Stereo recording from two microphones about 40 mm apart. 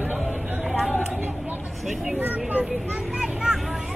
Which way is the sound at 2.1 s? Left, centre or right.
Right.